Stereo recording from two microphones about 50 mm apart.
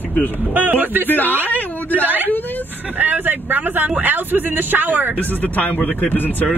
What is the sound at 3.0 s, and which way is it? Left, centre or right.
Speech, right.